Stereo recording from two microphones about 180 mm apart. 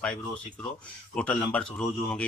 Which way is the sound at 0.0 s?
5° left (ahead or behind).